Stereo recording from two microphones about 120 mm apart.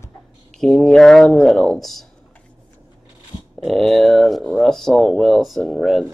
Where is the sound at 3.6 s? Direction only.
Centre (ahead or behind).